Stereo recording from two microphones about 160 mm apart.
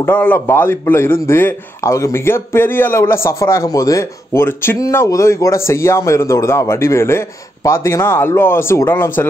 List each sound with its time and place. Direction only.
0.0 s a man's voice: 10° left (ahead or behind)